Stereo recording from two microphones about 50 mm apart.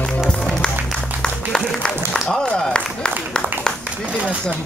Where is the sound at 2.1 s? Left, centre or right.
Centre.